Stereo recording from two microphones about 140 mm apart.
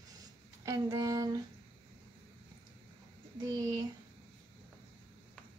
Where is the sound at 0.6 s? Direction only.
25° right (ahead or behind).